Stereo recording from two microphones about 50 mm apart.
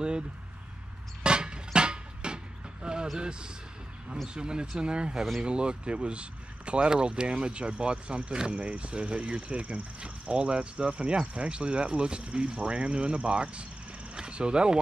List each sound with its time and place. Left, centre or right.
1.2 s vehicle: centre
3.2 s speech: centre